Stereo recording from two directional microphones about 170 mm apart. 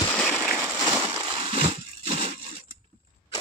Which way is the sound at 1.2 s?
30° right (ahead or behind).